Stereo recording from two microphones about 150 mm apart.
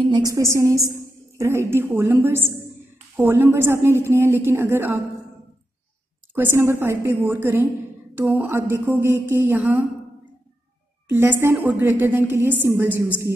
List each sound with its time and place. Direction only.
0.1 s a woman's voice: 25° right (ahead or behind)
6.3 s a woman's voice: 15° right (ahead or behind)
11.1 s a woman's voice: 15° right (ahead or behind)